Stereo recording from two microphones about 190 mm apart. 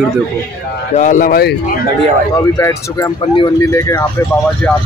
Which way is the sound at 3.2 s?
25° left (ahead or behind).